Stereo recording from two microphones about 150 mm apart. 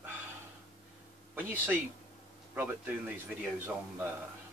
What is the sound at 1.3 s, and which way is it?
Speech, 10° right (ahead or behind).